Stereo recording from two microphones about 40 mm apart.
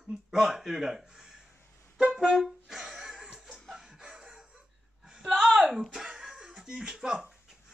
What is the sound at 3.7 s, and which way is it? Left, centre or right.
Chicken, centre.